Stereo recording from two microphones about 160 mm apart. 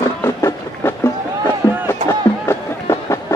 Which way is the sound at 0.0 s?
20° left (ahead or behind).